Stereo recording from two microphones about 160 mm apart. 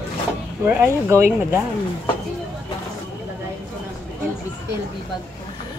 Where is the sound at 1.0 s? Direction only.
15° right (ahead or behind).